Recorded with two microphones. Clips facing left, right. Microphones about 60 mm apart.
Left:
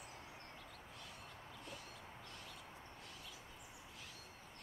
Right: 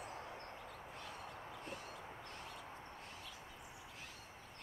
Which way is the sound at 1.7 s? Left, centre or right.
Right.